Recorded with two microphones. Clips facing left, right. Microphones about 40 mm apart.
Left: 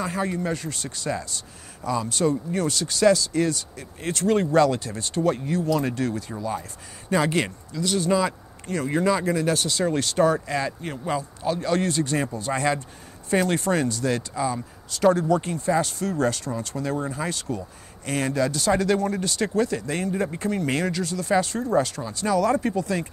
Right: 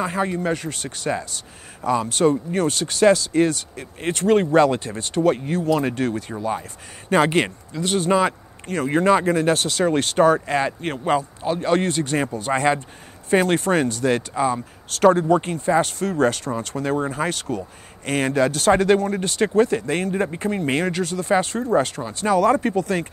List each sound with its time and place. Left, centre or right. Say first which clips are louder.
0.0 s speech: right 4 dB; right
10.8 s speech: right 6 dB; right
11.4 s speech: right 1 dB; right
20.2 s speech: right 2 dB; right